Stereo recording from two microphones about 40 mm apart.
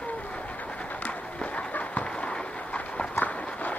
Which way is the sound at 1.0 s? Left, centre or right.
Left.